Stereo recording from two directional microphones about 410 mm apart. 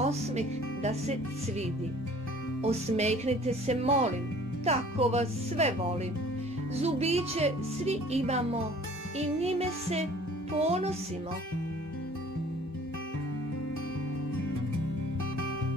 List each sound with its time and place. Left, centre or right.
0.0 s speech: centre
2.6 s speech: centre
9.4 s speech: centre